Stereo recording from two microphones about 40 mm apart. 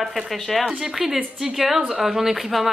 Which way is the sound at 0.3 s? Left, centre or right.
Centre.